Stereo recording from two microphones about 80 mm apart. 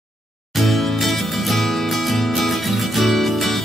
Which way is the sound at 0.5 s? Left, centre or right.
Centre.